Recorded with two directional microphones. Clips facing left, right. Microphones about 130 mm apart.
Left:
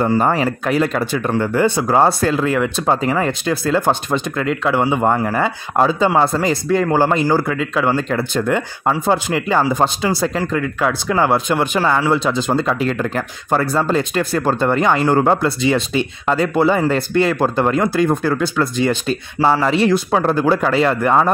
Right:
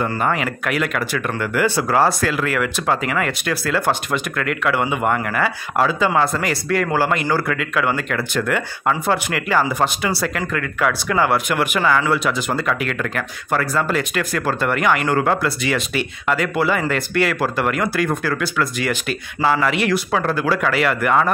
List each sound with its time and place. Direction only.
0.2 s speech: 35° left (ahead or behind)